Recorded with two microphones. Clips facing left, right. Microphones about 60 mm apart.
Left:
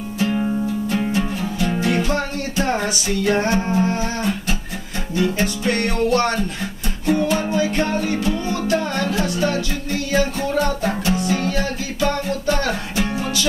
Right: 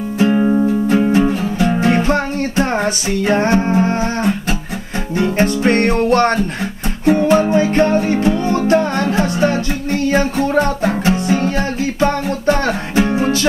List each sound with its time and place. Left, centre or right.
0.2 s music: right
3.6 s humming: right
5.1 s music: right